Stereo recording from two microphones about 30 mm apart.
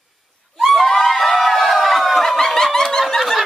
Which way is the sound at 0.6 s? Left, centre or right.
Centre.